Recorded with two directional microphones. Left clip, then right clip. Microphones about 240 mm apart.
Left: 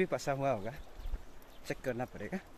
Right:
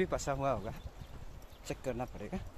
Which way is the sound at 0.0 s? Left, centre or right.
Centre.